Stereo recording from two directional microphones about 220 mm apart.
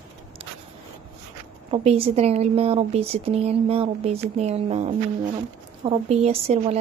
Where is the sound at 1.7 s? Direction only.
25° right (ahead or behind).